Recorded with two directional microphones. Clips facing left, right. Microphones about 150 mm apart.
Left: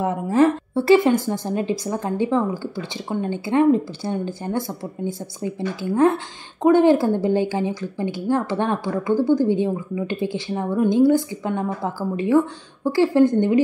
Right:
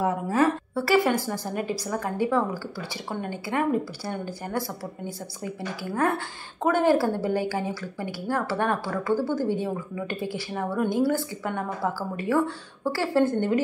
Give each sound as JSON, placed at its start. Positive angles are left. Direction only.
{"t": 0.0, "sound": "a woman's voice", "side_deg": 25}